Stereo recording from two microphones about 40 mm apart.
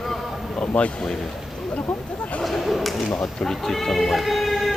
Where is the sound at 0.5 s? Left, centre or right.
Left.